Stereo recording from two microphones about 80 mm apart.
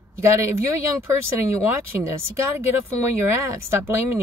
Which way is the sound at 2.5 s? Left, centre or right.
Right.